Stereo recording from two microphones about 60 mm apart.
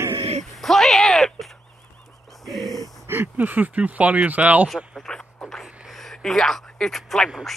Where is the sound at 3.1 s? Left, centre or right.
Right.